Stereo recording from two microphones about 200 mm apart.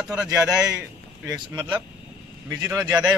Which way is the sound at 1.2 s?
20° right (ahead or behind).